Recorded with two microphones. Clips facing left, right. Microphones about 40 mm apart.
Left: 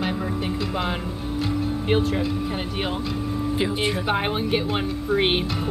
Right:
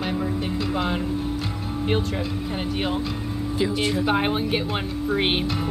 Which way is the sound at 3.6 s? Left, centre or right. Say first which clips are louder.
Right 3 dB; left.